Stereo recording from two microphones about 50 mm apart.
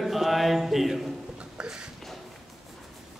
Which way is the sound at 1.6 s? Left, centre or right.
Centre.